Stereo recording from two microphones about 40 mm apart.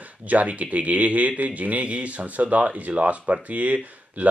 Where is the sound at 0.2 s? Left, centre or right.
Right.